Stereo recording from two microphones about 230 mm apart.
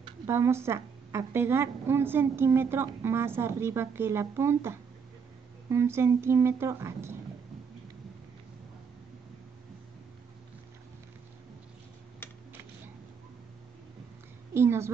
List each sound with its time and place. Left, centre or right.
0.3 s a woman's voice: centre
12.2 s typing: centre
14.5 s a woman's voice: centre